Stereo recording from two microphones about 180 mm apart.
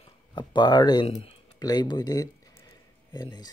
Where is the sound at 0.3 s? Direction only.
25° left (ahead or behind).